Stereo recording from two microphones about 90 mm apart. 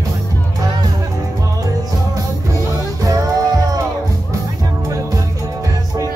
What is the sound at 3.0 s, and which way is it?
Music, 40° right (ahead or behind).